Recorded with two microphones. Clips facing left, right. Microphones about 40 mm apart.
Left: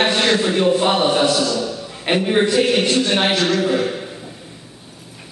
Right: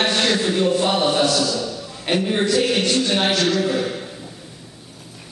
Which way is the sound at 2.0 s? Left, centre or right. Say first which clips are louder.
Left 3 dB; left.